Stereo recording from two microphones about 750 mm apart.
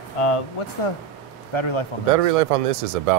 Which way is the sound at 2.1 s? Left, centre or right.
Right.